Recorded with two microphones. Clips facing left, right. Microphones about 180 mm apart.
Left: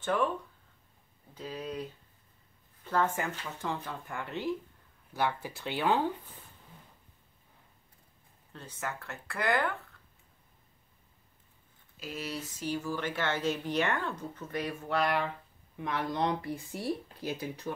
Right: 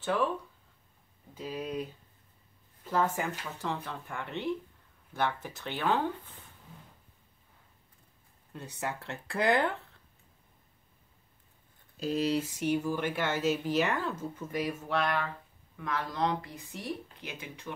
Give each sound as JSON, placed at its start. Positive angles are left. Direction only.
{"t": 0.0, "sound": "speech", "side_deg": 0}
{"t": 1.3, "sound": "speech", "side_deg": -10}
{"t": 8.5, "sound": "speech", "side_deg": -20}
{"t": 9.1, "sound": "speech", "side_deg": -30}
{"t": 12.0, "sound": "speech", "side_deg": -35}
{"t": 12.4, "sound": "a sound", "side_deg": -65}
{"t": 12.7, "sound": "speech", "side_deg": -15}
{"t": 15.7, "sound": "speech", "side_deg": 25}